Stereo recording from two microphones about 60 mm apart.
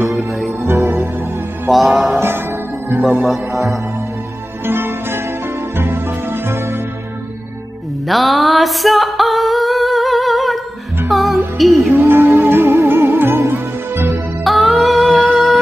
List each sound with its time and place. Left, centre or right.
0.0 s music: centre
1.7 s music: centre
2.1 s music: right
3.0 s speech: centre
4.6 s music: right
8.1 s music: centre
11.9 s music: right
14.4 s female singing: centre